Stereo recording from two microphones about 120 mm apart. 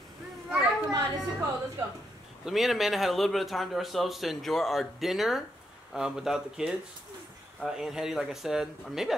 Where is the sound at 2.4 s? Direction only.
Centre (ahead or behind).